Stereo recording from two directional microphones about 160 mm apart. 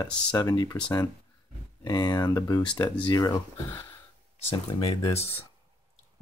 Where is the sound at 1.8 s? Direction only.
25° left (ahead or behind).